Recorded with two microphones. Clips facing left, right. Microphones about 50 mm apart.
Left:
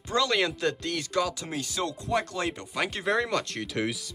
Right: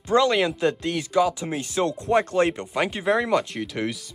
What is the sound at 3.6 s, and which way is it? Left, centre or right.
Speech, centre.